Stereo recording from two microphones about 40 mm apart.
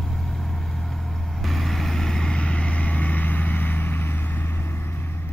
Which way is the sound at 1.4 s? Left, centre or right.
Centre.